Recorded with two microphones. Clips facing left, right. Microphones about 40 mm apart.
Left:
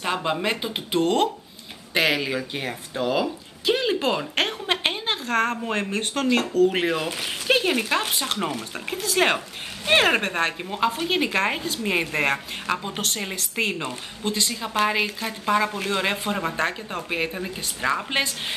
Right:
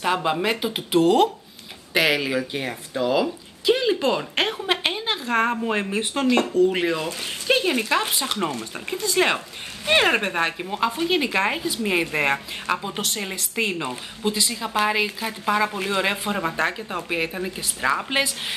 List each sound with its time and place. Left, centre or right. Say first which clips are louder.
0.0 s a woman's voice: right 3 dB; centre
4.8 s a sound: even; centre
5.2 s speech: right 2 dB; centre
6.7 s a woman's voice: even; centre